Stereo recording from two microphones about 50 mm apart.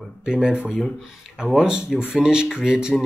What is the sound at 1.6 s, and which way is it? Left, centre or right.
Speech, centre.